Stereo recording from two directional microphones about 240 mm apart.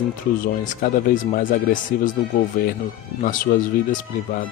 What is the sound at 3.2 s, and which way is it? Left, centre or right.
Speech, left.